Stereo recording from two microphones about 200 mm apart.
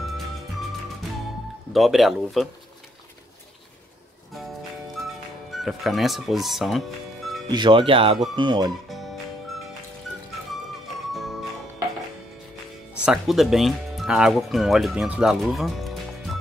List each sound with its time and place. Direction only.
1.7 s speech: centre (ahead or behind)
4.9 s music: centre (ahead or behind)
7.5 s speech: 25° right (ahead or behind)
12.9 s speech: 5° right (ahead or behind)